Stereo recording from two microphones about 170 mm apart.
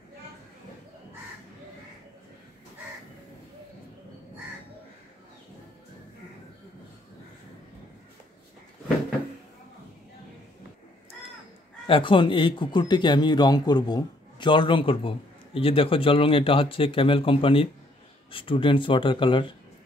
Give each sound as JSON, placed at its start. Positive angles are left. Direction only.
{"t": 11.9, "sound": "speech", "side_deg": 30}